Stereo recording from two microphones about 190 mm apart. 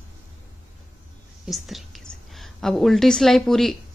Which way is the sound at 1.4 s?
Centre (ahead or behind).